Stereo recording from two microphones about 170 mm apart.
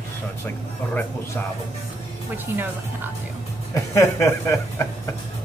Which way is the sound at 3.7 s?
15° left (ahead or behind).